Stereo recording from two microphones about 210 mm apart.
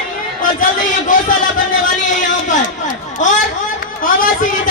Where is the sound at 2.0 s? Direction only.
35° left (ahead or behind).